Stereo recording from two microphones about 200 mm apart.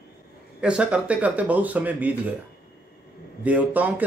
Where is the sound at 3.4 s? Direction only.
10° right (ahead or behind).